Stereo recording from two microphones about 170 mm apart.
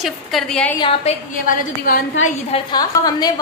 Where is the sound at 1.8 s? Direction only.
55° left (ahead or behind).